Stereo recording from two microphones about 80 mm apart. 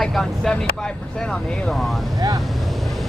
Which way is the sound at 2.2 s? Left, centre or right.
Right.